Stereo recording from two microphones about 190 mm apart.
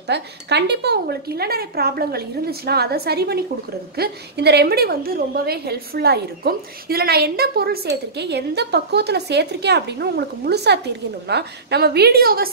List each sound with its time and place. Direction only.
0.1 s a woman's voice: 60° right (ahead or behind)